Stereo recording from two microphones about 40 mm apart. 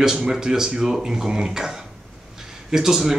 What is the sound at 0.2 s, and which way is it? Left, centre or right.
Speech, centre.